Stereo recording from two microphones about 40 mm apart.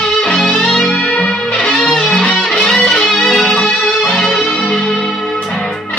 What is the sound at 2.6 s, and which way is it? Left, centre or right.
Music, centre.